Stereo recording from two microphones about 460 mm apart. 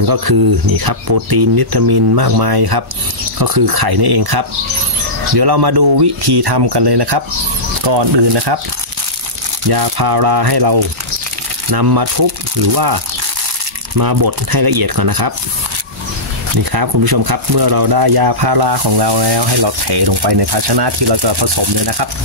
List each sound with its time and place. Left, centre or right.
0.0 s speech: right
9.7 s speech: right
16.5 s speech: right